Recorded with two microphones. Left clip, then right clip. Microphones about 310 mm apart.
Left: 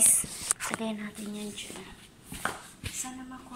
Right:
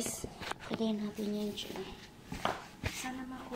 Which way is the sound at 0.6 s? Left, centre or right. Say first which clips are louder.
Left 2 dB; left.